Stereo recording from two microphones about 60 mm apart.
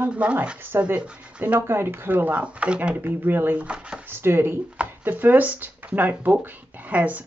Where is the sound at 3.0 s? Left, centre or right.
Right.